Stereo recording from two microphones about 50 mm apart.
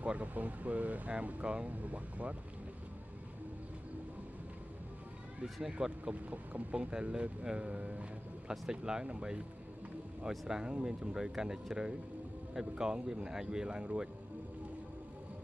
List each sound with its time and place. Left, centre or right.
0.0 s speech: right
5.4 s speech: centre
5.9 s speech: right
10.5 s speech: centre